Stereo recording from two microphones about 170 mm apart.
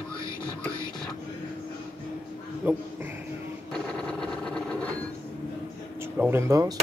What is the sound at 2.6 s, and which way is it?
Speech, 10° right (ahead or behind).